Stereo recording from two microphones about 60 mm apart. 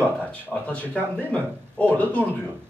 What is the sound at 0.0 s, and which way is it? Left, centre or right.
Speech, left.